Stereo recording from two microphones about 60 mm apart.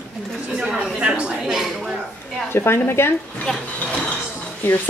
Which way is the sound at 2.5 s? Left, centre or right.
Left.